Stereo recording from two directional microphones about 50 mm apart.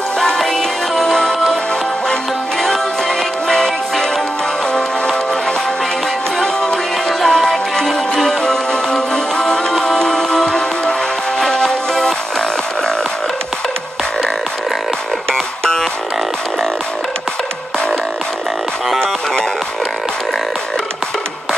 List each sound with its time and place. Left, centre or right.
0.2 s music: centre
2.6 s music: centre
6.4 s music: centre
15.3 s music: centre